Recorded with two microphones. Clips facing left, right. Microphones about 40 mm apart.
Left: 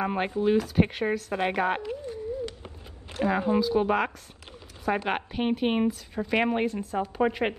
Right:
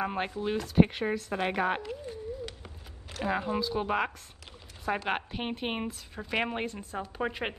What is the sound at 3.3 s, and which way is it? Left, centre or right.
A woman's voice, centre.